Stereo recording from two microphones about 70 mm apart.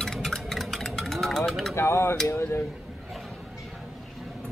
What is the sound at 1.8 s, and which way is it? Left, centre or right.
Speech, left.